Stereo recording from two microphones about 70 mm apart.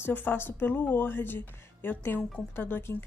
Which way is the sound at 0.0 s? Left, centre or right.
Left.